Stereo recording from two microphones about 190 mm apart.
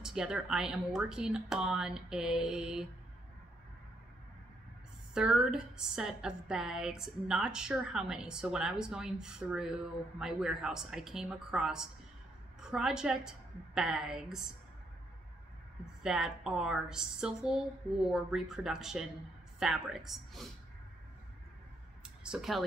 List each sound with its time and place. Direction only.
0.0 s a woman's voice: 5° right (ahead or behind)
5.1 s a woman's voice: 5° right (ahead or behind)
15.8 s a woman's voice: 5° right (ahead or behind)
22.0 s a sound: 5° right (ahead or behind)